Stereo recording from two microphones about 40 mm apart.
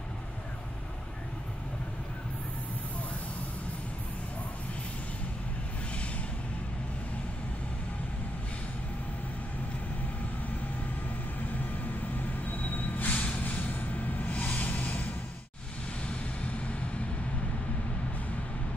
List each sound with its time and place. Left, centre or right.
12.4 s vehicle: left
13.1 s vehicle: left
13.4 s a sound: left